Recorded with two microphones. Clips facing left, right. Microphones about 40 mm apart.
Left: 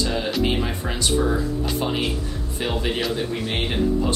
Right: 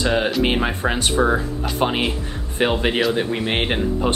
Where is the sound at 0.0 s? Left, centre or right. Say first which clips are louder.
Right 4 dB; right.